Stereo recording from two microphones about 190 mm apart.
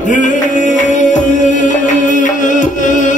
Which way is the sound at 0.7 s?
40° left (ahead or behind).